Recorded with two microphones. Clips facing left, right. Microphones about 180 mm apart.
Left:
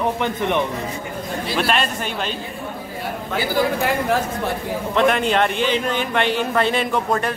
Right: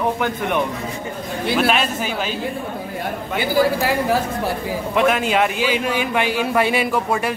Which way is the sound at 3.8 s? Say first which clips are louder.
Right 1 dB; 5° right (ahead or behind).